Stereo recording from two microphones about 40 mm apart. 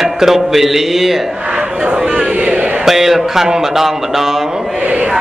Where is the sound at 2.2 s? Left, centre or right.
Right.